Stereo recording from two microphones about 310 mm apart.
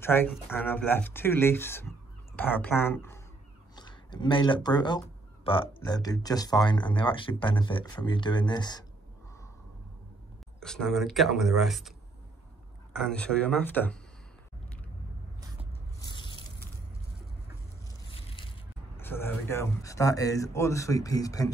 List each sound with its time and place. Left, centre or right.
0.0 s speech: centre
3.7 s a sound: centre
5.7 s speech: centre
10.6 s speech: centre
12.9 s speech: centre
16.0 s biting: centre
18.0 s a sound: centre
18.9 s speech: centre